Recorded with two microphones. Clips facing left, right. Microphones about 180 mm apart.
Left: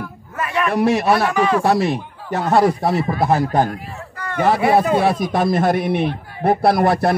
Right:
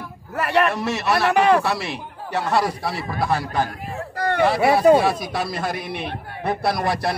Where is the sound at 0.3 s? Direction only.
65° right (ahead or behind).